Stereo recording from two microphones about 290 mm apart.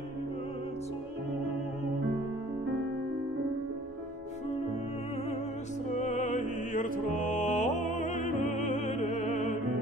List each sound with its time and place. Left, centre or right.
5.9 s music: left